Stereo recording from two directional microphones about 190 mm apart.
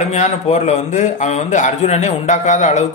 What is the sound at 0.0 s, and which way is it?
A man's voice, 35° left (ahead or behind).